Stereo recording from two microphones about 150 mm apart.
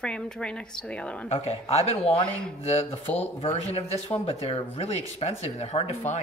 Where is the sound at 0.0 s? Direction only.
5° left (ahead or behind).